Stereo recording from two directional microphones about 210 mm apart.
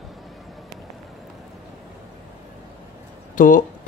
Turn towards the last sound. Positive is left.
turn(degrees=40)  # may be behind; listen again after turning